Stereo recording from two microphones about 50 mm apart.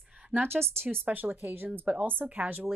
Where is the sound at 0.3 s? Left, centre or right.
Right.